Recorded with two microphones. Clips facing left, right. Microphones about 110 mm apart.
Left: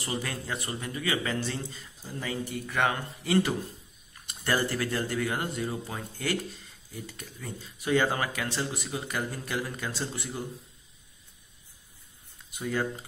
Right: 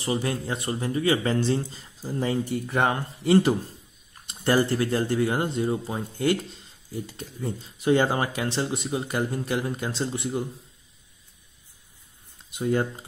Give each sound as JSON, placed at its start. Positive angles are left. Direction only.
{"t": 0.0, "sound": "speech", "side_deg": -25}
{"t": 12.5, "sound": "speech", "side_deg": -25}